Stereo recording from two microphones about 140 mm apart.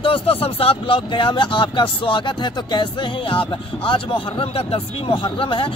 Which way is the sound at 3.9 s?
40° left (ahead or behind).